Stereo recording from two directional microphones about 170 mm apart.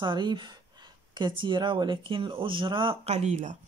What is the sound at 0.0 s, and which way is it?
Speech, 25° right (ahead or behind).